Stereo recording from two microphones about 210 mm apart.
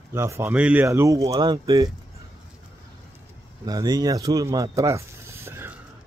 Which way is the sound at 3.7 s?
20° right (ahead or behind).